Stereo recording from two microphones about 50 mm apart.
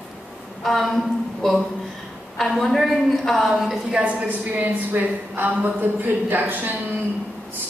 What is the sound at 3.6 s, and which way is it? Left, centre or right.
Speech, centre.